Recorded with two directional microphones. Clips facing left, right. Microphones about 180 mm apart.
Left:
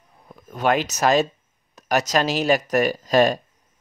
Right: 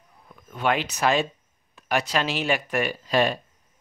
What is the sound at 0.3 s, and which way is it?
Speech, 40° left (ahead or behind).